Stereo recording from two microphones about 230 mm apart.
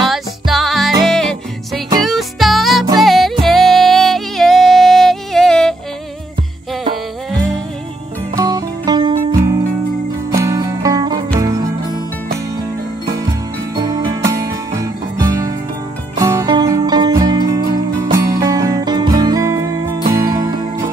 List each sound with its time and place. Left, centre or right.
0.0 s music: centre
8.4 s music: centre
13.7 s music: centre